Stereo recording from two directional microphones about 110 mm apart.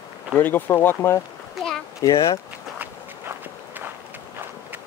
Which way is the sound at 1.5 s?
Centre (ahead or behind).